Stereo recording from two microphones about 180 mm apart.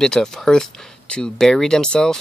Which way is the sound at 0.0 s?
5° left (ahead or behind).